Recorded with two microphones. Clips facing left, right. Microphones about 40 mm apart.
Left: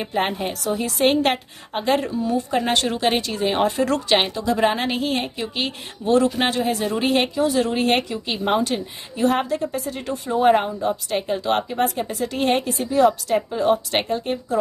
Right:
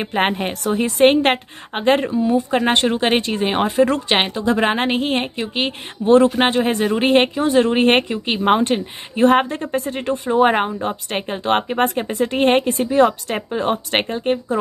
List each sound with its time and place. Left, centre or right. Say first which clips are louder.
0.0 s speech: right 4 dB; right
2.0 s a woman's voice: right 5 dB; right
6.6 s speech: right 4 dB; right